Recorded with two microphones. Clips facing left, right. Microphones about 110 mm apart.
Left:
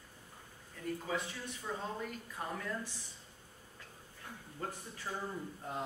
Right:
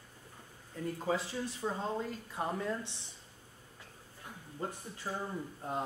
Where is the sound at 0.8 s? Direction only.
30° right (ahead or behind).